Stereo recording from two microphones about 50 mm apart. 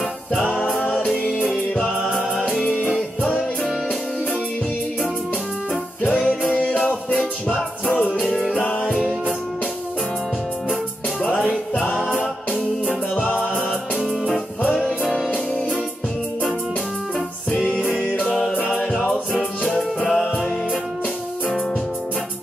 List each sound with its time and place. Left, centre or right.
0.5 s music: centre
2.6 s music: left
6.2 s music: left
7.8 s music: left
11.2 s music: centre
14.8 s music: centre
17.6 s music: left
20.1 s music: centre